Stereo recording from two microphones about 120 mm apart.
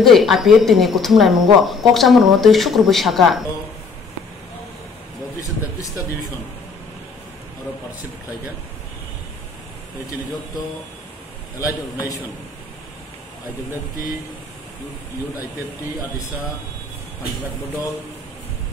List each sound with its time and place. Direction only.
0.0 s speech: centre (ahead or behind)
11.6 s a man's voice: 25° left (ahead or behind)